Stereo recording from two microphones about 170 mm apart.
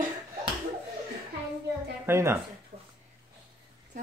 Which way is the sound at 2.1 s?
15° right (ahead or behind).